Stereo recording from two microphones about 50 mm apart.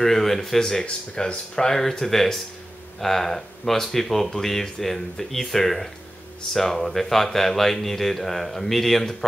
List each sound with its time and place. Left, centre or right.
0.0 s speech: centre